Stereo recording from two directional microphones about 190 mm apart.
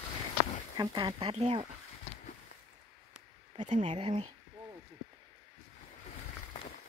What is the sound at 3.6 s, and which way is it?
Speech, 40° right (ahead or behind).